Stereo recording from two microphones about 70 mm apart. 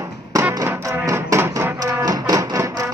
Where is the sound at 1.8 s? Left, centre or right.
Right.